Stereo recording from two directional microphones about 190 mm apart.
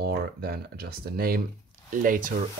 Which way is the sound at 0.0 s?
55° right (ahead or behind).